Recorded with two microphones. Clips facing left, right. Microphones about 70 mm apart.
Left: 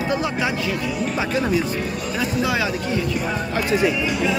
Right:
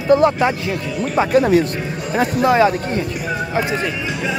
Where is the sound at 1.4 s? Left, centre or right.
Right.